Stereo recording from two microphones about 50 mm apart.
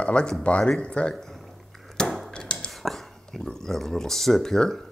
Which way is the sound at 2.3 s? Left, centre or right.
Centre.